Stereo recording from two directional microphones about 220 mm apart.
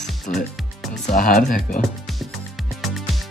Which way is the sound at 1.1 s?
35° left (ahead or behind).